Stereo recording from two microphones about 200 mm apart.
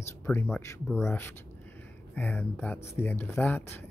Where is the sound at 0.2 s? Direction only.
10° left (ahead or behind).